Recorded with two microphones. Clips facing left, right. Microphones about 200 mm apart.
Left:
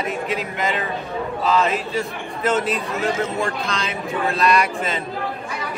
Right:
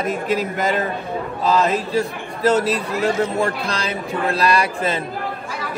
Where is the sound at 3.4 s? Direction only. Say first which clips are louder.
Right 2 dB; 35° right (ahead or behind).